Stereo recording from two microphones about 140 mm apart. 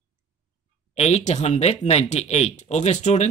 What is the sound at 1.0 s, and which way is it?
Speech, 50° left (ahead or behind).